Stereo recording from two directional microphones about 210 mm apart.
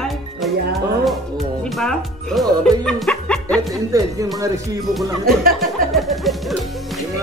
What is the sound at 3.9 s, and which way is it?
Speech, 15° right (ahead or behind).